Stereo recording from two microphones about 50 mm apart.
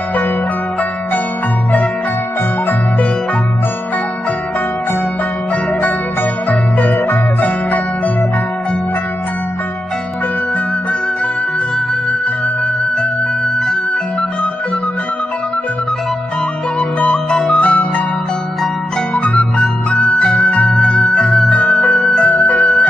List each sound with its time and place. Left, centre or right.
6.5 s music: left
17.0 s music: left
19.1 s zither: left
20.0 s music: left
22.3 s music: left
22.6 s music: centre